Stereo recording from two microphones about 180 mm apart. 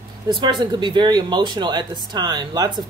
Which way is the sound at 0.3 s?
25° right (ahead or behind).